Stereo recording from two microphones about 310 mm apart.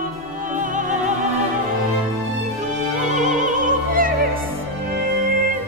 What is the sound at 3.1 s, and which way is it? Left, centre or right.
Opera, right.